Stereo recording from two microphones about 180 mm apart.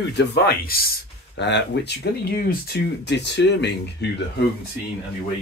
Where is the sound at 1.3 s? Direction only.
75° left (ahead or behind).